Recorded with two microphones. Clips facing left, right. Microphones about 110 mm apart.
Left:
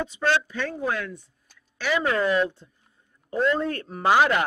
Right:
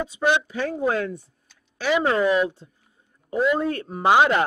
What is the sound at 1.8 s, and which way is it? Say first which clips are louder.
Speech: right 3 dB; 15° right (ahead or behind).